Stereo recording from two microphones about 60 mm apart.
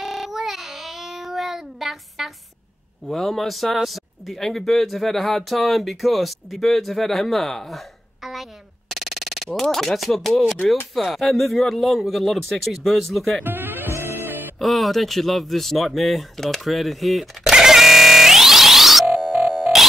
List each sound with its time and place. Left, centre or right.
0.0 s child singing: centre
3.1 s speech: centre
13.4 s music: right
14.6 s speech: centre
17.5 s music: centre
19.0 s sine wave: centre